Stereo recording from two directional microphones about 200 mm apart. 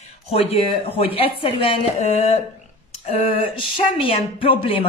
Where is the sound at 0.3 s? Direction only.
30° left (ahead or behind).